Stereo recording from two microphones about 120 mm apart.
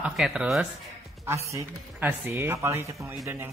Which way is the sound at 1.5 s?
20° right (ahead or behind).